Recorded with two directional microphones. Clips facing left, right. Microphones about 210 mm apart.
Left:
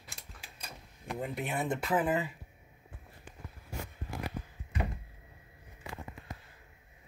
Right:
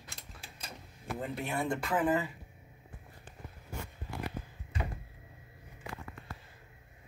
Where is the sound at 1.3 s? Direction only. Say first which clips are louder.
Even; 20° left (ahead or behind).